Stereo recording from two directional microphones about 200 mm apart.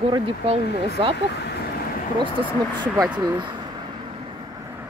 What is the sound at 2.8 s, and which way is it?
Speech, 15° right (ahead or behind).